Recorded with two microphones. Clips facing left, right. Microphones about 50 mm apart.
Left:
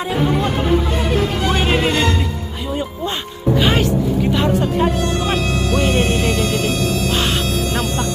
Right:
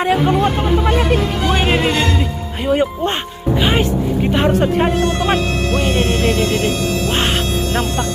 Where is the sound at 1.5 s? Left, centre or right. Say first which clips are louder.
Right 3 dB; centre.